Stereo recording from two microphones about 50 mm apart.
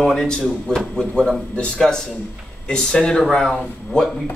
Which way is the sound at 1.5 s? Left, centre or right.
Left.